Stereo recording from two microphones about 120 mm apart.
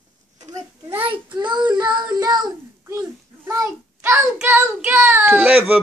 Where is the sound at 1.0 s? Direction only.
40° right (ahead or behind).